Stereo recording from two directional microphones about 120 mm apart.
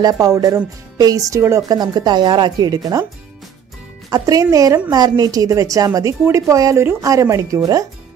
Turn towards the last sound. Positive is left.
turn(degrees=-30)  # may be behind; listen again after turning